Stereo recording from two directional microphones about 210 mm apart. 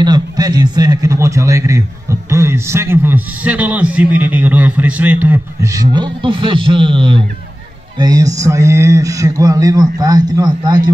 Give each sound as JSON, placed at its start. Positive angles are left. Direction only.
{"t": 0.0, "sound": "a man's voice", "side_deg": -20}